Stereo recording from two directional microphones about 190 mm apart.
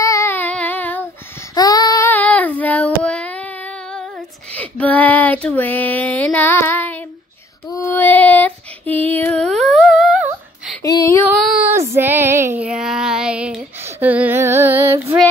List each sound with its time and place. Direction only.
0.0 s child singing: 15° left (ahead or behind)
1.5 s child singing: 20° left (ahead or behind)
4.6 s child singing: 10° left (ahead or behind)
7.7 s female singing: 15° left (ahead or behind)
10.8 s a sound: 20° left (ahead or behind)
11.9 s female singing: 10° right (ahead or behind)